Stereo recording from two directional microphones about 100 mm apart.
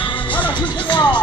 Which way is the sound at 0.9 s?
50° left (ahead or behind).